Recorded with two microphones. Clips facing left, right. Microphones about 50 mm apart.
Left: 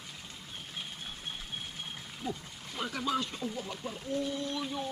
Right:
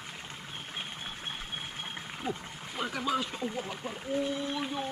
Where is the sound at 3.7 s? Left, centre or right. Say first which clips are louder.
Right 2 dB; centre.